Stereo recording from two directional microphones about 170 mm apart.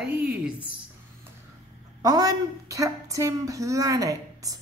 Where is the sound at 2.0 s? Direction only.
20° right (ahead or behind).